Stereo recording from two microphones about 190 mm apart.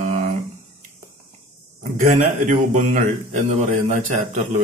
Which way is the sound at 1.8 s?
40° right (ahead or behind).